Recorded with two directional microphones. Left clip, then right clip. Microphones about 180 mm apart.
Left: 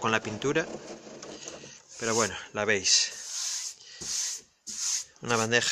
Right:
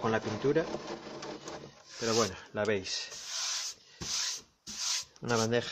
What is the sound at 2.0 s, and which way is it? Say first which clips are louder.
Speech: left 2 dB; 20° left (ahead or behind).